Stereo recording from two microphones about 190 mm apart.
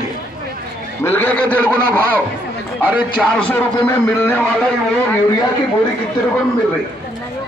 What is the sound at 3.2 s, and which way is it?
A man's voice, 5° left (ahead or behind).